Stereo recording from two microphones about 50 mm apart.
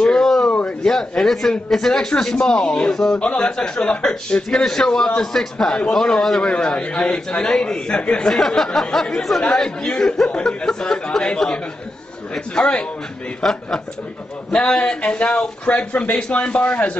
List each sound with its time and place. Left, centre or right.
0.0 s a sound: centre
0.7 s a man's voice: centre
3.2 s a man's voice: left
6.5 s a man's voice: centre
13.4 s a man's voice: centre; by 16.9 s left